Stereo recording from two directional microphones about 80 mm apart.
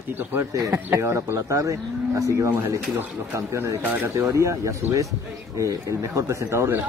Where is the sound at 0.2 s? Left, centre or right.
Right.